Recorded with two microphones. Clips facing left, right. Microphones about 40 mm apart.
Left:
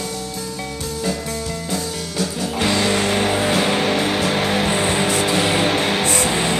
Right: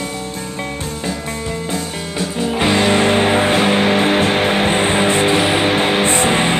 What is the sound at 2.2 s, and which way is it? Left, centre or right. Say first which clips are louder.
Music: right 4 dB; right.